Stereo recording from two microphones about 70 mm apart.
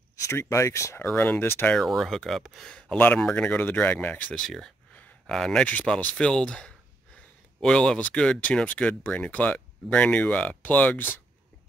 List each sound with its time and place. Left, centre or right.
0.2 s speech: left
1.1 s speech: left
1.8 s speech: centre
3.0 s speech: left
4.4 s speech: centre; by 11.1 s left